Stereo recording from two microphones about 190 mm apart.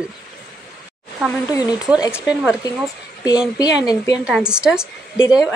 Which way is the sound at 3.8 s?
20° left (ahead or behind).